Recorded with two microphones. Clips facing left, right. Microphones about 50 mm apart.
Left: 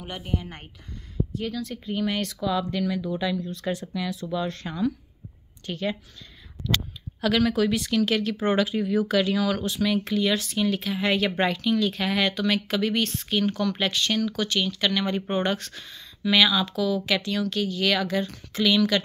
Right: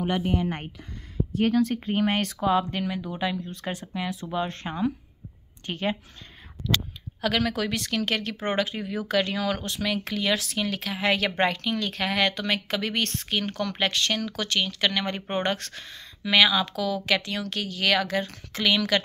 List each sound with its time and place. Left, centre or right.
0.0 s speech: right
1.3 s speech: right
7.2 s speech: right
9.8 s speech: right
11.3 s speech: right